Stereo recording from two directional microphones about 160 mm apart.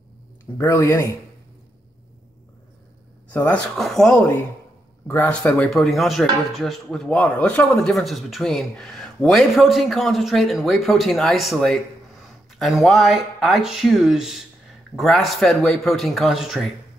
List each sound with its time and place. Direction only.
0.6 s speech: 20° left (ahead or behind)
3.3 s speech: 5° left (ahead or behind)